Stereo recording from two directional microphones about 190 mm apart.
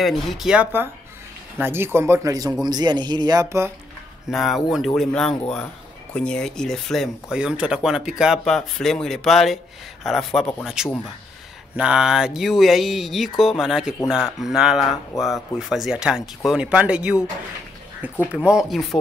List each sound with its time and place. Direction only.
0.0 s speech: centre (ahead or behind)
4.3 s speech: centre (ahead or behind)
18.3 s speech: 5° right (ahead or behind)